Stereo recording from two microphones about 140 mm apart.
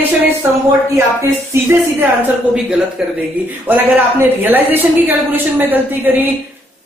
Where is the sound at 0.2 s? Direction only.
20° right (ahead or behind).